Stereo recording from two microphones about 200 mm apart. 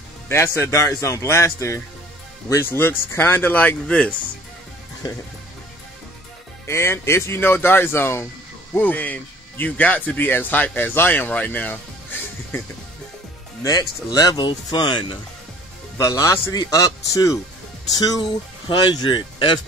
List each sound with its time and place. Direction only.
0.3 s speech: 10° left (ahead or behind)
6.6 s speech: 10° left (ahead or behind)